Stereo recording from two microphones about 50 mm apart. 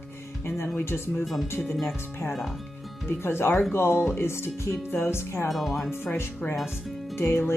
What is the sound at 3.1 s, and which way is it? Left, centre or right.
Speech, left.